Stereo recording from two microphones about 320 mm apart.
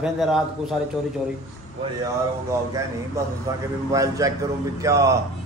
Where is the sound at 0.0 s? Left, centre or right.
Centre.